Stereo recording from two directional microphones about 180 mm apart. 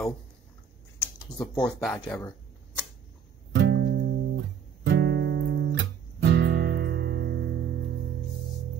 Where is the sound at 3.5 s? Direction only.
80° right.